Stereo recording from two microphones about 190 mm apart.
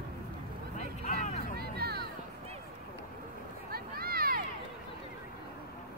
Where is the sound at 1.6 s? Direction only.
55° right (ahead or behind).